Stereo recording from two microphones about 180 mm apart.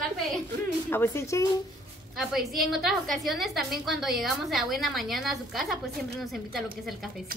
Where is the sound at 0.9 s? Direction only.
15° left (ahead or behind).